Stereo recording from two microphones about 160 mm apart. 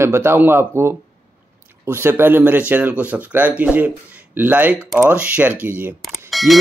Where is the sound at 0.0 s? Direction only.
15° right (ahead or behind).